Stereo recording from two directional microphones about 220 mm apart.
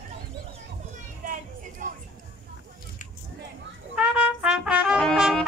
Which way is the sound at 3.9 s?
5° right (ahead or behind).